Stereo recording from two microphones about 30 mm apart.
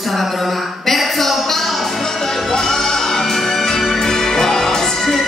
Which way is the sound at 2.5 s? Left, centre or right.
Centre.